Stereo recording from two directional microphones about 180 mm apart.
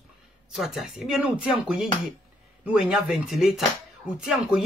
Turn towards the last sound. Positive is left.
turn(degrees=0)  # may be behind; listen again after turning